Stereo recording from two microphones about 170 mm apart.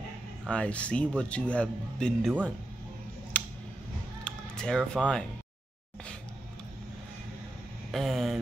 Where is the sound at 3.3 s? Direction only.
10° left (ahead or behind).